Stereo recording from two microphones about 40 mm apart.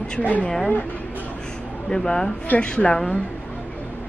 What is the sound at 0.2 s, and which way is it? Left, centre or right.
Speech, left.